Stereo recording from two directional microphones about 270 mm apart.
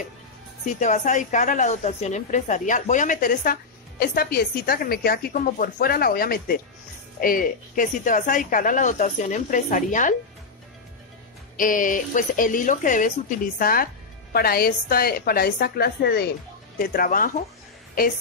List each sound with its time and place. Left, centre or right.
0.7 s a woman's voice: left
11.5 s a woman's voice: left